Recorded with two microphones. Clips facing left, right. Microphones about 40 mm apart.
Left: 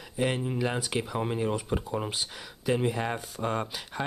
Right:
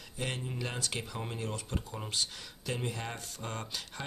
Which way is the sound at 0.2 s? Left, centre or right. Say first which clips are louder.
Left 9 dB; centre.